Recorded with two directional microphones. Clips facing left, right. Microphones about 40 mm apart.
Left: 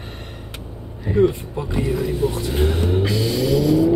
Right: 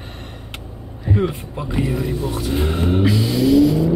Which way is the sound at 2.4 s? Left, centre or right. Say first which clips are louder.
Even; right.